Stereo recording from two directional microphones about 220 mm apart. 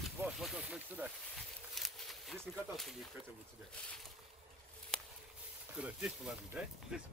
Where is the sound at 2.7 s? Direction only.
Centre (ahead or behind).